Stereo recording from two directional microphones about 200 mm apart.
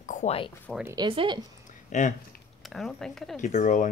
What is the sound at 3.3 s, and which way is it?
Speech, 40° left (ahead or behind).